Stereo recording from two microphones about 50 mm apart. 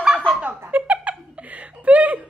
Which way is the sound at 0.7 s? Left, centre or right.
Right.